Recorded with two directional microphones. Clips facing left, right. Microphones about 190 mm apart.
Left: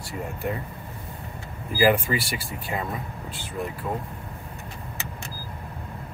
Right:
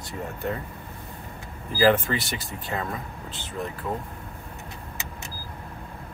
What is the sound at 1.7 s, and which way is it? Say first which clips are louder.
Speech: even; 10° left (ahead or behind).